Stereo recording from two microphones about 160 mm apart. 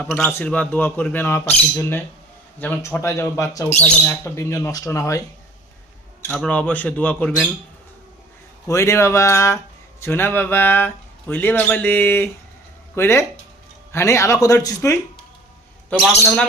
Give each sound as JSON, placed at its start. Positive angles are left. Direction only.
{"t": 0.0, "sound": "speech", "side_deg": 10}
{"t": 6.2, "sound": "speech", "side_deg": 10}
{"t": 8.6, "sound": "speech", "side_deg": 20}